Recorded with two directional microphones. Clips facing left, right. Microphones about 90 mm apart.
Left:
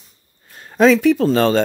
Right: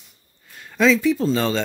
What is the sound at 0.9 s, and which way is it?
Speech, 70° left (ahead or behind).